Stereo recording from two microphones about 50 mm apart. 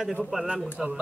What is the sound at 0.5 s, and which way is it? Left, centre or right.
Speech, centre.